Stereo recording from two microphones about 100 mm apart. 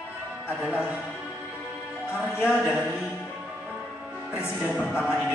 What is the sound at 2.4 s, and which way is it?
Speech, 10° right (ahead or behind).